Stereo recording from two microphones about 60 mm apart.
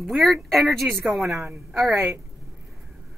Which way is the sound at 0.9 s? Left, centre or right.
Right.